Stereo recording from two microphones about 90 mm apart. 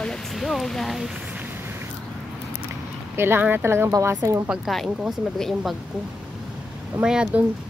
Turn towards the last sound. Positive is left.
turn(degrees=-10)  # may be behind; listen again after turning